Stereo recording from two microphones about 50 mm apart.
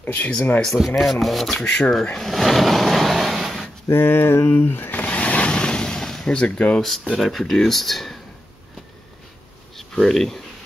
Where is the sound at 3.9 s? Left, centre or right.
Left.